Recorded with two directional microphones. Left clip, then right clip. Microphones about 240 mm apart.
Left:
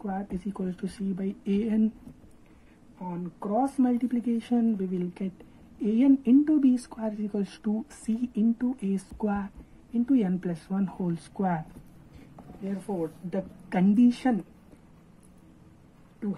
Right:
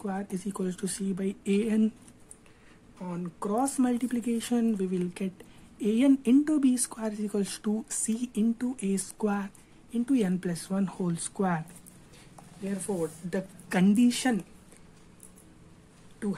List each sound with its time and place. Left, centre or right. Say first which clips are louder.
0.0 s speech: even; right
3.1 s speech: left 1 dB; centre
13.3 s speech: even; right